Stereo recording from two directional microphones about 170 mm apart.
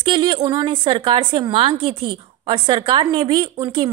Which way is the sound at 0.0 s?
30° right (ahead or behind).